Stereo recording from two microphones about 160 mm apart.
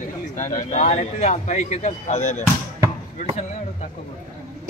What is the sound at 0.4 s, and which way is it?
Speech, 50° left (ahead or behind).